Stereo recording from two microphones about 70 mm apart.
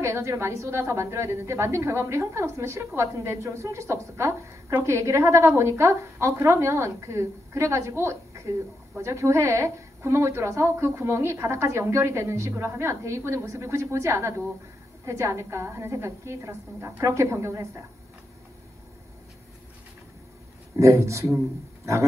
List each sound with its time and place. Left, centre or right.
0.0 s a woman's voice: right
20.7 s a woman's voice: right